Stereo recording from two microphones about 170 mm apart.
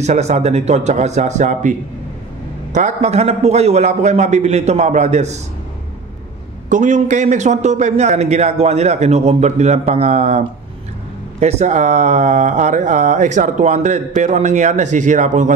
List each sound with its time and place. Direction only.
0.0 s a man's voice: 40° right (ahead or behind)
6.7 s a man's voice: 45° right (ahead or behind)